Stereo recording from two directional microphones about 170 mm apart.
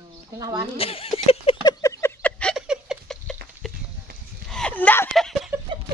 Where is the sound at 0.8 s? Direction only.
35° left (ahead or behind).